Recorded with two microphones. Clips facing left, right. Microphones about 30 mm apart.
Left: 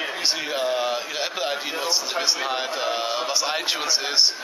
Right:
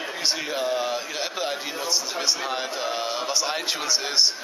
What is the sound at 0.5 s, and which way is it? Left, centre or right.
A man's voice, centre.